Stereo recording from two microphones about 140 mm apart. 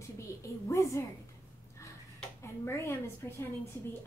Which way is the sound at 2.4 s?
15° left (ahead or behind).